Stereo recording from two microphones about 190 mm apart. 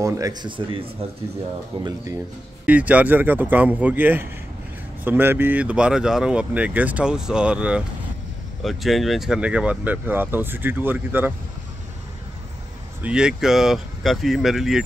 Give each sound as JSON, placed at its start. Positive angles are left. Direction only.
{"t": 0.0, "sound": "speech", "side_deg": -20}
{"t": 2.6, "sound": "speech", "side_deg": -10}
{"t": 13.0, "sound": "speech", "side_deg": -5}